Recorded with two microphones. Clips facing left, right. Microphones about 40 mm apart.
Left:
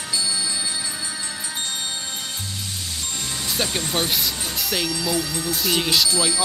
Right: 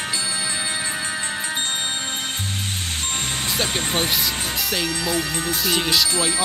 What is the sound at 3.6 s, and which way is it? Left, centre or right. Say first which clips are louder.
Speech: even; right.